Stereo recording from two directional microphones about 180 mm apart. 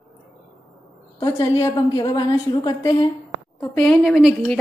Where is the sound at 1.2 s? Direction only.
20° left (ahead or behind).